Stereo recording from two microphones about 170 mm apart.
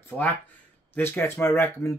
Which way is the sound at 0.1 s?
10° left (ahead or behind).